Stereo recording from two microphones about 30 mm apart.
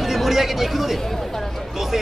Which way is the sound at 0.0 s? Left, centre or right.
Centre.